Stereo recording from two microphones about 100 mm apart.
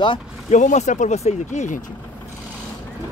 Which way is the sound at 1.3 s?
90° left.